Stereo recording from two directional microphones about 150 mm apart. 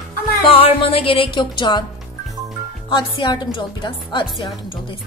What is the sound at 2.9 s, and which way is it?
A woman's voice, 30° left (ahead or behind).